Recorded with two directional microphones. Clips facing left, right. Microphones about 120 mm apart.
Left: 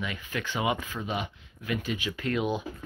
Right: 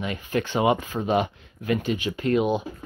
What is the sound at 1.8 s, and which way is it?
Speech, 35° right (ahead or behind).